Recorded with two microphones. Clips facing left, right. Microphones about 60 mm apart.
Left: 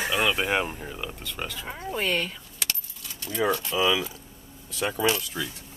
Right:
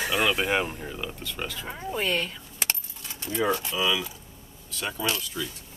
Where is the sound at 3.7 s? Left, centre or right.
Centre.